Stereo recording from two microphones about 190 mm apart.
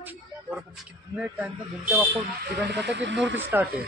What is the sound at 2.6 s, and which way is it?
Speech, 60° right (ahead or behind).